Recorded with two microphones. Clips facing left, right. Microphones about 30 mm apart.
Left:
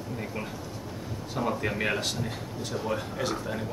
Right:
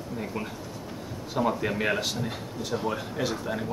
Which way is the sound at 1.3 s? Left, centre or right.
Centre.